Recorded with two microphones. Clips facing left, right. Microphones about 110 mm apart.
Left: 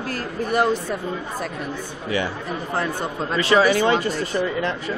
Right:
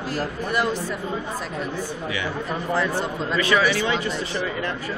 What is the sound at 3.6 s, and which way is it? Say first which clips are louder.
Speech: left 4 dB; 45° left (ahead or behind).